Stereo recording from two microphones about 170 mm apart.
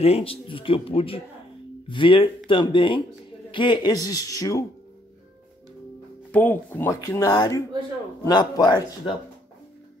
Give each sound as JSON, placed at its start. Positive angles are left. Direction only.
{"t": 0.0, "sound": "speech", "side_deg": 35}
{"t": 6.3, "sound": "speech", "side_deg": 10}
{"t": 7.1, "sound": "speech", "side_deg": 25}